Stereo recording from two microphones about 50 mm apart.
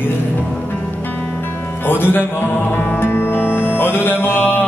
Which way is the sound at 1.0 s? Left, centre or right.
Left.